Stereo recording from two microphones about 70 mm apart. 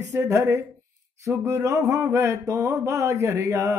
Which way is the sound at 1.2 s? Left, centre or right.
Right.